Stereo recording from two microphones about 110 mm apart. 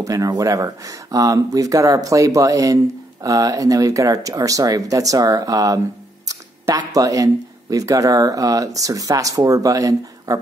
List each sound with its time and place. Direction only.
0.0 s speech: 30° right (ahead or behind)
6.2 s a sound: 35° right (ahead or behind)
7.7 s speech: 30° right (ahead or behind)